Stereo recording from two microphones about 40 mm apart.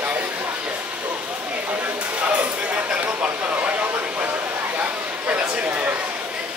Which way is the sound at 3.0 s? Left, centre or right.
Right.